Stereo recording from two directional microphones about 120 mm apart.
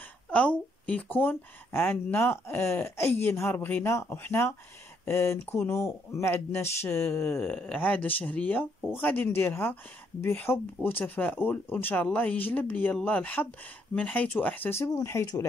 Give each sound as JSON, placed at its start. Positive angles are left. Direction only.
{"t": 0.3, "sound": "speech", "side_deg": 10}